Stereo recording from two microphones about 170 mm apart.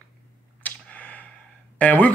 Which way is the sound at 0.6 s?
10° left (ahead or behind).